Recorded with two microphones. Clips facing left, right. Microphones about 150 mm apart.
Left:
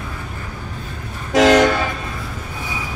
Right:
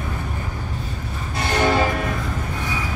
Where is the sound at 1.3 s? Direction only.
90° left.